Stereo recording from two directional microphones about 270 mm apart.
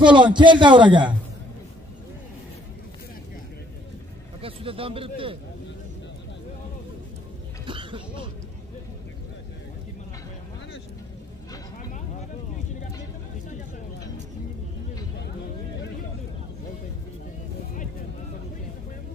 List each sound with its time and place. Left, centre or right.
0.0 s a man's voice: centre
4.4 s a man's voice: centre
7.6 s a sound: centre